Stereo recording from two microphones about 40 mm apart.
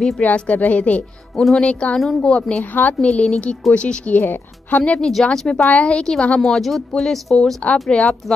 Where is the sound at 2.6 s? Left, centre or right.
Left.